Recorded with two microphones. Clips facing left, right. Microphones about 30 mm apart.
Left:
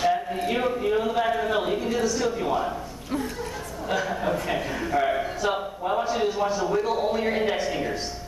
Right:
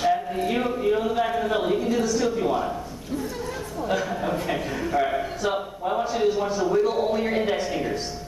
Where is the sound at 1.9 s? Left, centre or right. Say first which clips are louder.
Right 2 dB; centre.